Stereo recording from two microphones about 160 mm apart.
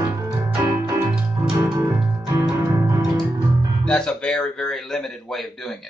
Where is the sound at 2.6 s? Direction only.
25° right (ahead or behind).